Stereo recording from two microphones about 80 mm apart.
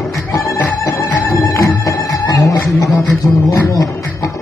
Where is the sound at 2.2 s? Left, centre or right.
Left.